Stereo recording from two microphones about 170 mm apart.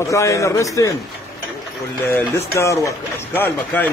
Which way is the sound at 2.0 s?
10° left (ahead or behind).